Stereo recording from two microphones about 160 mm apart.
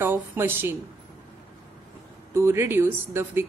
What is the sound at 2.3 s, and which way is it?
A woman's voice, 15° right (ahead or behind).